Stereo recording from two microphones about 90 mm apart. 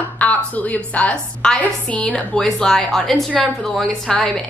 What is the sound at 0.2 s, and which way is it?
A woman's voice, 15° left (ahead or behind).